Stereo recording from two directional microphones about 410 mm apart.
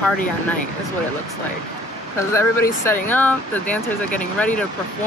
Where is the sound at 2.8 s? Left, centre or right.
Centre.